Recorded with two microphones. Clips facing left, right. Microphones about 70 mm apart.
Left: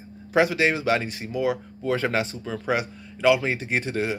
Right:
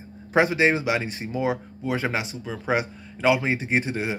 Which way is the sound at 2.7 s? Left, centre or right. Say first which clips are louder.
Right 1 dB; right.